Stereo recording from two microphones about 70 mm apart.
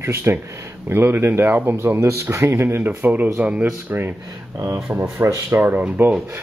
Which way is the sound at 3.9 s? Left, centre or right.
Right.